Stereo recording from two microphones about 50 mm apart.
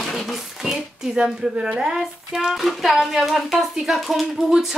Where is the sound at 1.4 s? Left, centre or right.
Right.